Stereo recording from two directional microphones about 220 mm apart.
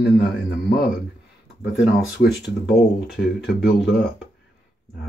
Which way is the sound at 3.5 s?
50° left (ahead or behind).